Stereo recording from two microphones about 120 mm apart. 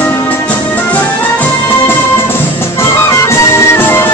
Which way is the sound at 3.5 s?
20° left (ahead or behind).